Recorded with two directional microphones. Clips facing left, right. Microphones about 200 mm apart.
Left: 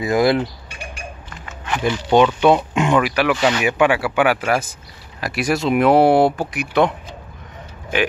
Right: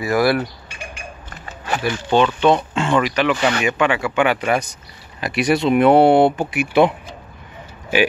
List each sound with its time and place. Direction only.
0.0 s speech: 20° left (ahead or behind)
1.3 s a sound: 40° right (ahead or behind)
1.8 s speech: 15° left (ahead or behind); by 6.9 s 5° right (ahead or behind)